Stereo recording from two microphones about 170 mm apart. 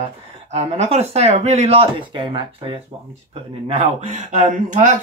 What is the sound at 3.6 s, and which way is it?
Speech, 45° right (ahead or behind).